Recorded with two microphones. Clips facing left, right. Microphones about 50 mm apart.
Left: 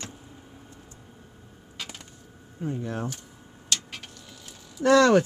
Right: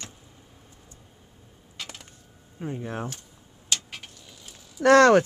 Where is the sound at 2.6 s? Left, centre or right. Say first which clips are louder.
Left 1 dB; right.